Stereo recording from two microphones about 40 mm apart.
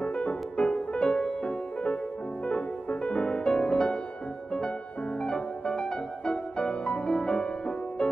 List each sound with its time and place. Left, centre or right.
0.0 s music: left
5.2 s music: left